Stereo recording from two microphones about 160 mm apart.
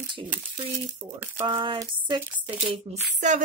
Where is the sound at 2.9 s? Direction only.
40° right (ahead or behind).